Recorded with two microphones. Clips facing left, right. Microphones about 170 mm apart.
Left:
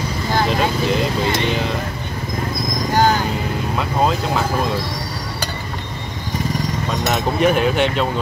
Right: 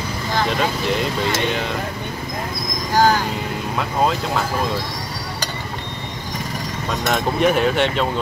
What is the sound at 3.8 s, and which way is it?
Speech, centre (ahead or behind).